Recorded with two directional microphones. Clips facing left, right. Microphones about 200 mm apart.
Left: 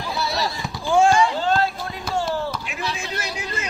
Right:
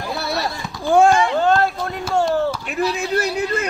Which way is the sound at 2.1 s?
55° right (ahead or behind).